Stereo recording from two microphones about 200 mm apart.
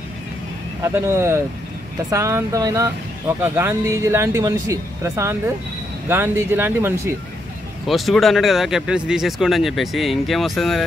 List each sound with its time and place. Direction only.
0.8 s speech: 15° right (ahead or behind)